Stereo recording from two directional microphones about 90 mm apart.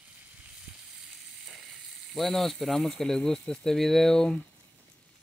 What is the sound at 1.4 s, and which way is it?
Frying, 5° right (ahead or behind).